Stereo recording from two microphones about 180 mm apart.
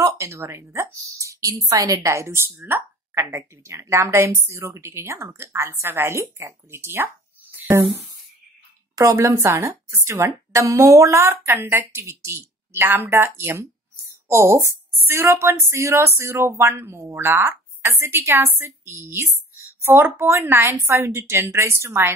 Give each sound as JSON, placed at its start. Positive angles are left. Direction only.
{"t": 0.0, "sound": "speech", "side_deg": -15}
{"t": 7.5, "sound": "a sound", "side_deg": -10}
{"t": 8.9, "sound": "speech", "side_deg": -15}